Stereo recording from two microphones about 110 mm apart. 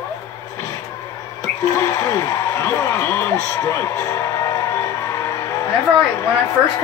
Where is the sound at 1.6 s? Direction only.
25° left (ahead or behind).